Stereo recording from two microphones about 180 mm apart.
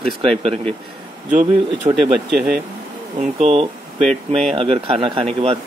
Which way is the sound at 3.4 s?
35° right (ahead or behind).